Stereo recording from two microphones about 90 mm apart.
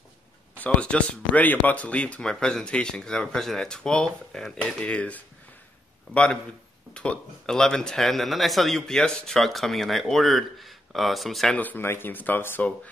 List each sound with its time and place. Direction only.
0.6 s speech: 15° left (ahead or behind)
6.9 s speech: 10° left (ahead or behind)
11.5 s speech: 20° left (ahead or behind)